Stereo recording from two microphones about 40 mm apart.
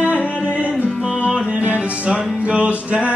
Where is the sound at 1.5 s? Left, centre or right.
Right.